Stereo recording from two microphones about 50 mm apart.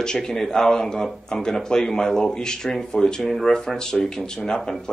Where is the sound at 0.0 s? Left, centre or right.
Centre.